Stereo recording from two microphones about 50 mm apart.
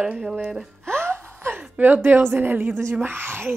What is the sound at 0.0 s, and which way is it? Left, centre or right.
Speech, centre.